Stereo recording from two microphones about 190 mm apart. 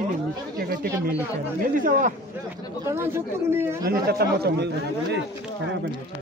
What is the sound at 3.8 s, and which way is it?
Speech, 55° right (ahead or behind).